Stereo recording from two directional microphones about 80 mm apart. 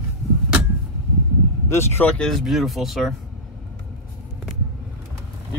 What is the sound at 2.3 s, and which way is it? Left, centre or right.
Speech, centre.